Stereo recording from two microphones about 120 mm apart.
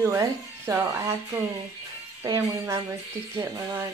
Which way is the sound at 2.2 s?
25° right (ahead or behind).